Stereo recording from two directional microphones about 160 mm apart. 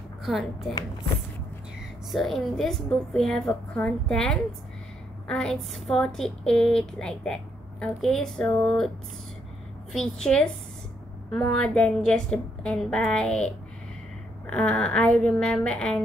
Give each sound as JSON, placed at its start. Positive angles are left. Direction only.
{"t": 0.2, "sound": "a woman's voice", "side_deg": 0}
{"t": 2.0, "sound": "a woman's voice", "side_deg": 0}
{"t": 9.9, "sound": "a woman's voice", "side_deg": 5}